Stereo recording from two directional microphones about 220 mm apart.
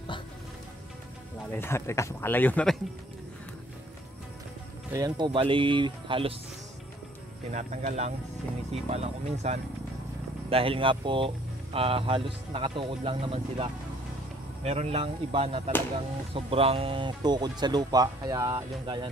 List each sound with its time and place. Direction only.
1.5 s speech: 10° left (ahead or behind)
4.9 s speech: 20° right (ahead or behind)
7.5 s speech: 30° right (ahead or behind)